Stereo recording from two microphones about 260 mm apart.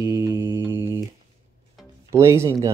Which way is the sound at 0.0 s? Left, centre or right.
Centre.